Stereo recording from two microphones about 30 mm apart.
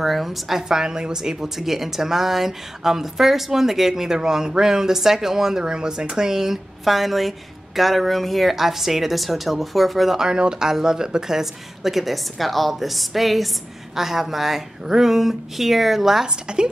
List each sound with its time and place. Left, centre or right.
0.0 s a woman's voice: centre
0.7 s speech: right
1.6 s speech: centre
5.6 s speech: right
6.8 s a woman's voice: centre
10.1 s a woman's voice: right
16.5 s a woman's voice: right